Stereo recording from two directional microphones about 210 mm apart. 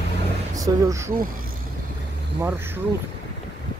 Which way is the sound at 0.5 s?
15° right (ahead or behind).